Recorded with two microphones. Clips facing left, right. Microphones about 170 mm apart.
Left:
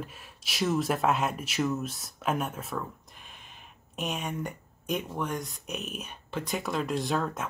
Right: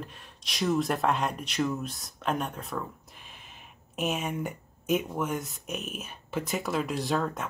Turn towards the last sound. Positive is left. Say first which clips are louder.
# right 1 dB
turn(degrees=0)  # may be behind; listen again after turning